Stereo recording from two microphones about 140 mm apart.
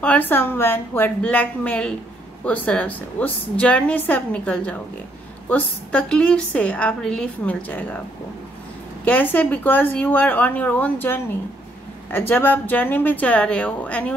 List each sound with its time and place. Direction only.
0.0 s a woman's voice: 10° left (ahead or behind)
9.0 s a woman's voice: 10° left (ahead or behind)